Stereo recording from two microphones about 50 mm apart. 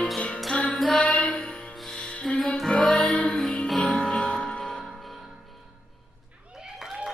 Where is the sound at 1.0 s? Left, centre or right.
Left.